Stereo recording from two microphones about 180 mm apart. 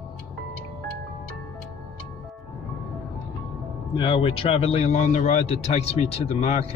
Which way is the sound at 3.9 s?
30° left (ahead or behind).